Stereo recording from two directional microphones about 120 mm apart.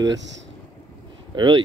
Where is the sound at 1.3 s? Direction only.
40° right (ahead or behind).